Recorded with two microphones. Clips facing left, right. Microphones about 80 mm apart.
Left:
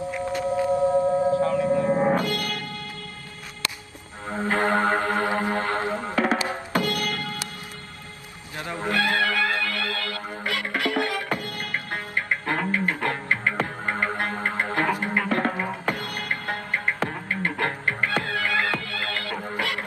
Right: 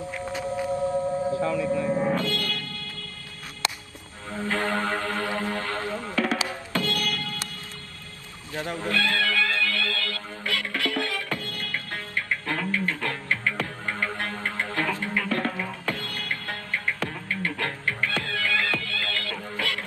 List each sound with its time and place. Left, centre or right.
0.5 s whale vocalization: left
1.7 s music: left
2.0 s music: left
4.3 s music: left
8.7 s music: left